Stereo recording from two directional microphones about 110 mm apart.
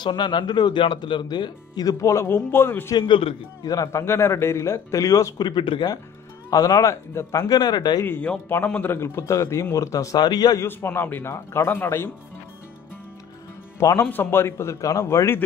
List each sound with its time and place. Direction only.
0.0 s speech: 45° left (ahead or behind); by 3.0 s 20° left (ahead or behind)
3.0 s a man's voice: 50° left (ahead or behind)
3.6 s speech: 35° left (ahead or behind)
6.5 s speech: 35° left (ahead or behind)
8.0 s speech: 15° left (ahead or behind); by 10.6 s 40° left (ahead or behind)
10.6 s speech: 20° left (ahead or behind)
13.7 s speech: 25° left (ahead or behind)